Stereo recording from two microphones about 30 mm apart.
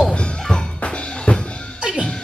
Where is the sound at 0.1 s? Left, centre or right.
Left.